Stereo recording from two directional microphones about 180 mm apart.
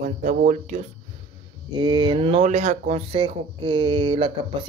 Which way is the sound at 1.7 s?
25° right (ahead or behind).